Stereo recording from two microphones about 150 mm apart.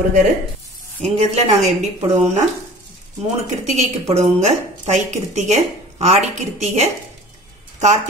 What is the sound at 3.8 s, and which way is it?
A woman's voice, 45° right (ahead or behind).